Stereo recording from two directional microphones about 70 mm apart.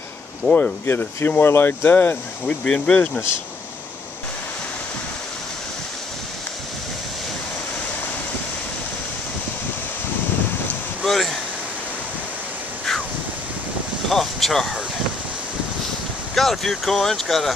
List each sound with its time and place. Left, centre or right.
0.4 s speech: centre
0.8 s speech: left
2.4 s speech: centre
11.1 s a sound: centre
14.0 s wind: centre
16.3 s speech: centre